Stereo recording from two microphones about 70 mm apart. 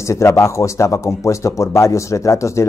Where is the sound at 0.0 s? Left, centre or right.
Left.